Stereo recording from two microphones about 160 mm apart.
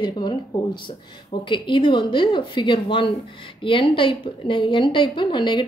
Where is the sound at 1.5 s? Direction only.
30° left (ahead or behind).